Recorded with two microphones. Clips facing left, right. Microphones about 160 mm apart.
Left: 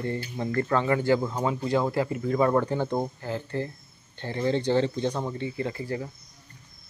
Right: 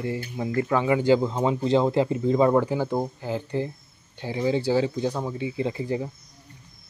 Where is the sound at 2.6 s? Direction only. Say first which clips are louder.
Right 2 dB; 10° right (ahead or behind).